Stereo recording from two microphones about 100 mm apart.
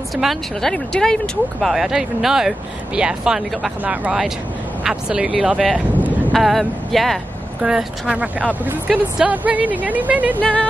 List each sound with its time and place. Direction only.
0.1 s speech: centre (ahead or behind)
6.3 s speech: centre (ahead or behind)
7.6 s speech: 10° right (ahead or behind)
10.4 s music: 15° left (ahead or behind)